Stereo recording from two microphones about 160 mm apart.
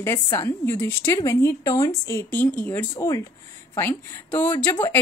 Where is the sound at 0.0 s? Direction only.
15° left (ahead or behind).